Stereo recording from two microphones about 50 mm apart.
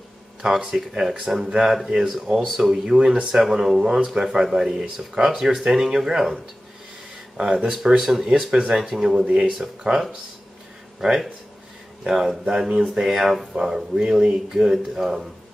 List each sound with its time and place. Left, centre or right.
0.4 s speech: centre
7.3 s speech: centre
8.0 s speech: centre
8.5 s speech: right
8.7 s speech: centre
9.0 s speech: right